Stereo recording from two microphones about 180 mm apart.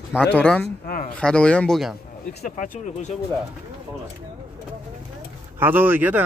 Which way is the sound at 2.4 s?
45° left (ahead or behind).